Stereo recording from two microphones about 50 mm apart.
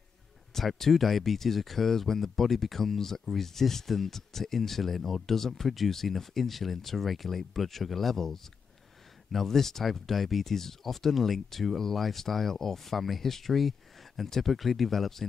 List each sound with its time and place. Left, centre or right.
0.6 s speech: centre